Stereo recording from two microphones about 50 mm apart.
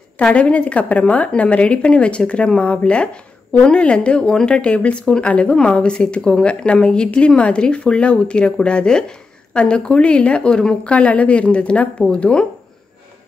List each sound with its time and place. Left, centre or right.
0.2 s a woman's voice: left